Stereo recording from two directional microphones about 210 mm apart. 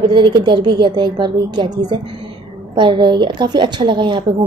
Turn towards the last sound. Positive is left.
turn(degrees=-20)  # may be behind; listen again after turning